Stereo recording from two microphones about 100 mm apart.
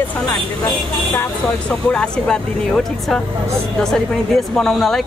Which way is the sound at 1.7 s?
10° left (ahead or behind).